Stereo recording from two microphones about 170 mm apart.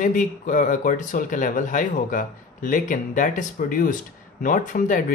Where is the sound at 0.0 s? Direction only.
50° left (ahead or behind).